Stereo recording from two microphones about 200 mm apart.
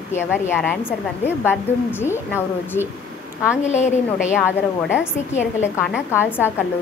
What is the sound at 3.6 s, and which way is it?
Speech, 35° left (ahead or behind).